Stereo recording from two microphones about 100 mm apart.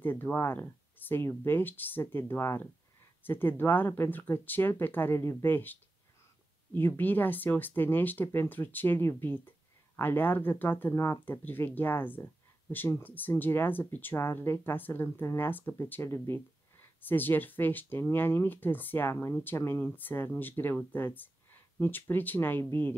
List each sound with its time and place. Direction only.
0.0 s speech: 20° left (ahead or behind)